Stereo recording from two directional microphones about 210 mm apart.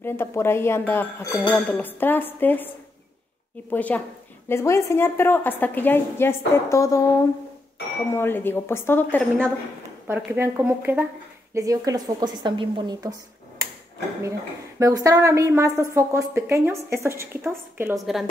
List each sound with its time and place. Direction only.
0.0 s speech: 10° left (ahead or behind)
3.7 s speech: 5° left (ahead or behind)
8.1 s speech: 10° left (ahead or behind)
10.0 s a woman's voice: 10° right (ahead or behind)
14.8 s a woman's voice: 15° right (ahead or behind)